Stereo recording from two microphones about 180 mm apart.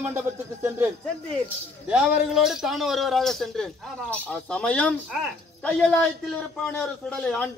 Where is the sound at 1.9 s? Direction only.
Centre (ahead or behind).